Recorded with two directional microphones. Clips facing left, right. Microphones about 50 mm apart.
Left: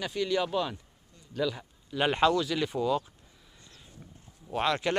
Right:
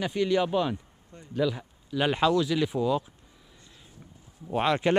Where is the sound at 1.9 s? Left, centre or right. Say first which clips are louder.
Right 1 dB; centre.